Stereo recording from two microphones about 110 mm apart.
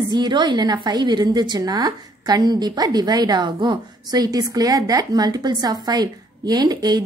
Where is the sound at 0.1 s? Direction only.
40° right (ahead or behind).